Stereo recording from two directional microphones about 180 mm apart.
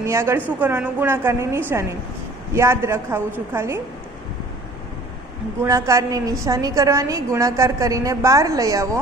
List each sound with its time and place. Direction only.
0.0 s a woman's voice: 15° right (ahead or behind)
5.6 s a woman's voice: 15° right (ahead or behind)